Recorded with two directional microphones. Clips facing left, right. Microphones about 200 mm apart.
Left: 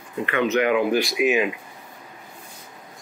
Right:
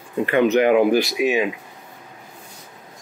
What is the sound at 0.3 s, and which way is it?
Speech, 35° right (ahead or behind).